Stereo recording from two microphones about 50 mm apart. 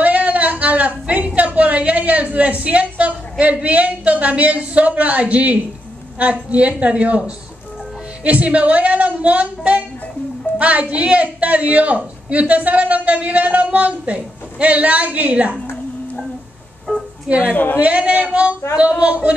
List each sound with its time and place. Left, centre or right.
0.0 s a woman's voice: right
10.6 s speech: right
16.9 s music: left
17.4 s a woman's voice: left
17.7 s speech: right